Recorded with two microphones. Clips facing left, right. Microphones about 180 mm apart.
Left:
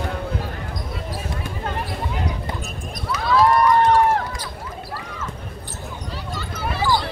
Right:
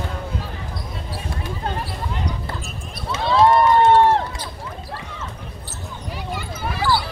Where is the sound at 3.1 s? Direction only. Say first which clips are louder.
Right 2 dB; 25° right (ahead or behind).